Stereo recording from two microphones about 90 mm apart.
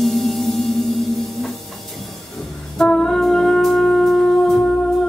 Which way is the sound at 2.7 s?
5° left (ahead or behind).